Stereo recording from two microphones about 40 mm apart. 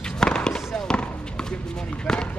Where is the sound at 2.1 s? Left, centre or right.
Centre.